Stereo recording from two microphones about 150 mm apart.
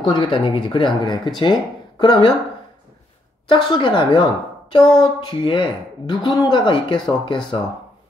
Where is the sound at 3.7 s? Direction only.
35° left (ahead or behind).